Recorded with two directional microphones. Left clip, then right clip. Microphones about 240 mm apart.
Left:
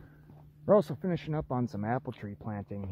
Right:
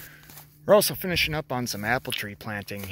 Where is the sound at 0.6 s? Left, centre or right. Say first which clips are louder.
Right 6 dB; right.